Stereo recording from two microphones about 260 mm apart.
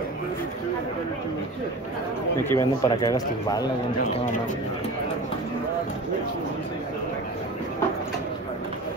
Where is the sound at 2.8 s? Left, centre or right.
Centre.